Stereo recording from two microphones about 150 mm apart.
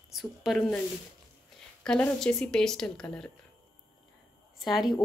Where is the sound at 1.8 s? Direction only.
5° left (ahead or behind).